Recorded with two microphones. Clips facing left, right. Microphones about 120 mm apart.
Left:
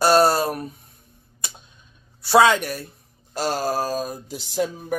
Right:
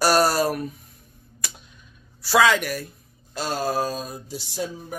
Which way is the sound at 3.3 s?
40° left (ahead or behind).